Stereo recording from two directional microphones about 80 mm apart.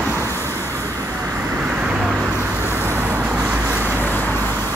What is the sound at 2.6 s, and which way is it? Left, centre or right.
Vehicle, right.